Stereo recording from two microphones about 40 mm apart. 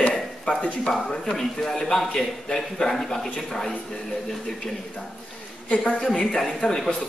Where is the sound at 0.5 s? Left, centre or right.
Left.